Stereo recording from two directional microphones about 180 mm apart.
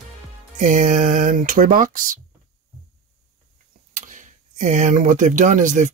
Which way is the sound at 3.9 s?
45° right (ahead or behind).